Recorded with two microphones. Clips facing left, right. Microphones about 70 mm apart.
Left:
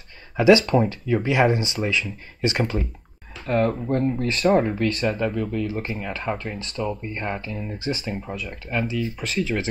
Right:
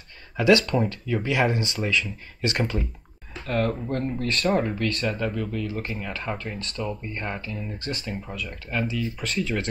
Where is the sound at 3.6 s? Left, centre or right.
Centre.